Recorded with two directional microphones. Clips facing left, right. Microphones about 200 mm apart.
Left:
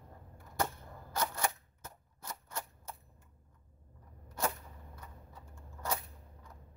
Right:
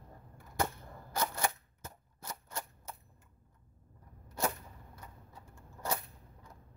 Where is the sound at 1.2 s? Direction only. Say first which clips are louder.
Right 1 dB; 5° right (ahead or behind).